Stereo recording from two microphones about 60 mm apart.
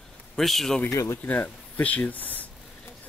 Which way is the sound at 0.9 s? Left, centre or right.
Left.